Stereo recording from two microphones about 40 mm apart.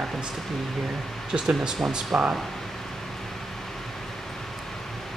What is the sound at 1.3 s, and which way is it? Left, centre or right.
Speech, centre.